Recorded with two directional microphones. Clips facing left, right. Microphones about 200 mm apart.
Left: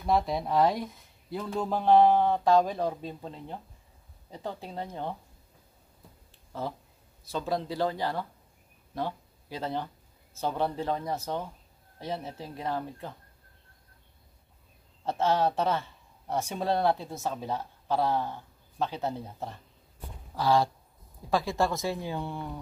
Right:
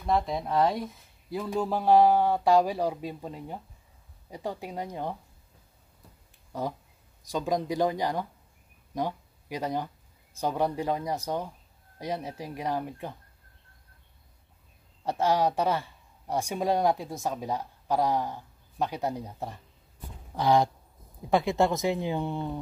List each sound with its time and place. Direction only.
0.0 s speech: centre (ahead or behind)
7.2 s speech: 15° right (ahead or behind)
15.0 s speech: 10° right (ahead or behind)